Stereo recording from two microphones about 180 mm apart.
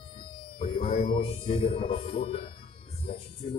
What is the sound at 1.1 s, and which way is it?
A man's voice, 30° left (ahead or behind).